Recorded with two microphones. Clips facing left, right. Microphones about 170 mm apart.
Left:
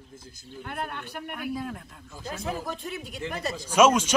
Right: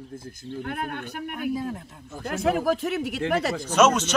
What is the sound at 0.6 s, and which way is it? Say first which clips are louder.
Speech: right 2 dB; 50° right (ahead or behind).